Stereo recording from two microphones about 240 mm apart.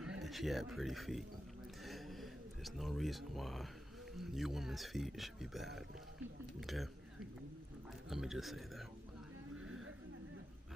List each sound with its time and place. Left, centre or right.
0.0 s speech: centre
1.9 s a sound: centre
4.2 s speech: centre
8.1 s speech: centre